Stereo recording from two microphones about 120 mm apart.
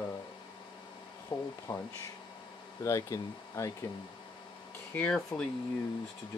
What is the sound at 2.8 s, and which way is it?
Speech, 25° left (ahead or behind).